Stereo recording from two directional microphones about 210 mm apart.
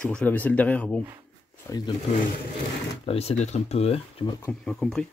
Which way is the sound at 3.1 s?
30° left (ahead or behind).